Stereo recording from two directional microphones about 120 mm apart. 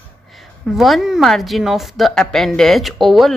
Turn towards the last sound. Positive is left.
turn(degrees=0)  # may be behind; listen again after turning